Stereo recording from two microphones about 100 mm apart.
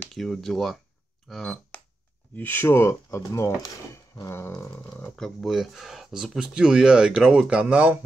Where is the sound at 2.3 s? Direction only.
20° left (ahead or behind).